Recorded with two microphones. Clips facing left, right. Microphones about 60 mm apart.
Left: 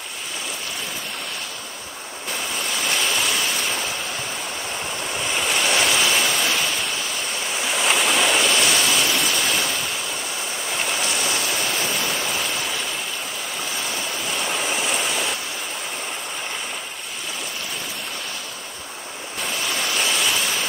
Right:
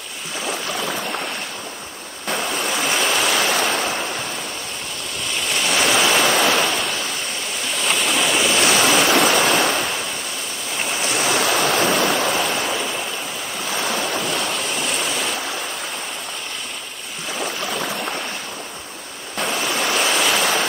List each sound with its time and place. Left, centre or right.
2.6 s waves: right
5.2 s waves: centre
6.1 s waterfall: right
7.6 s stream: centre
8.6 s waves: right
11.1 s stream: right
14.2 s waves: right
14.5 s waves: centre
19.8 s waves: right